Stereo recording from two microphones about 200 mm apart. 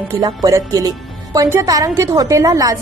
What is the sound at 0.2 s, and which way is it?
Speech, 15° right (ahead or behind).